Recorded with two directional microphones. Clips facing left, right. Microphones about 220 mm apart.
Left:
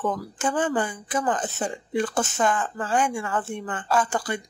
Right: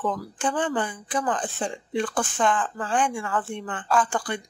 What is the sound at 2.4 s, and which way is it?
Speech, 5° left (ahead or behind).